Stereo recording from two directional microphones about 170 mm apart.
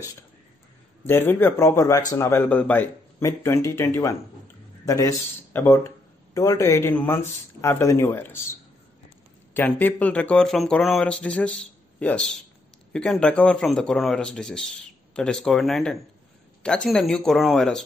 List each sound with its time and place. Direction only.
1.0 s speech: 10° left (ahead or behind)
9.5 s speech: 10° left (ahead or behind)